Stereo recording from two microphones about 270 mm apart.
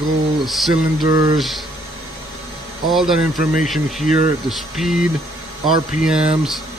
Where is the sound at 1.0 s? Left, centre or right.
Centre.